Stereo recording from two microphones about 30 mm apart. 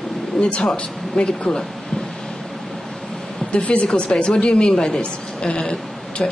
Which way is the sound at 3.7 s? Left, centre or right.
Left.